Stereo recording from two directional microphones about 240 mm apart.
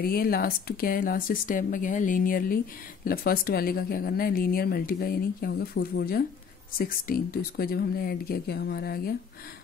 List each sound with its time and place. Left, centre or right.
0.0 s speech: left